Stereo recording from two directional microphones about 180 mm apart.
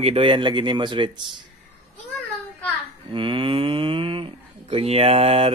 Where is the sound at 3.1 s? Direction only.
30° right (ahead or behind).